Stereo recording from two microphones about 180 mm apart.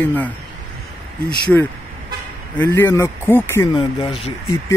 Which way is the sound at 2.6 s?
10° left (ahead or behind).